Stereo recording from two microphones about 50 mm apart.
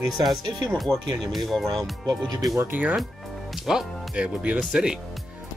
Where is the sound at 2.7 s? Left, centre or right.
Right.